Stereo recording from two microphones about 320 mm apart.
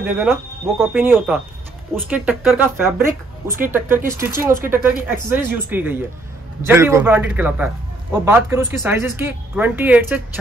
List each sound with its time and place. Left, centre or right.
0.0 s a man's voice: centre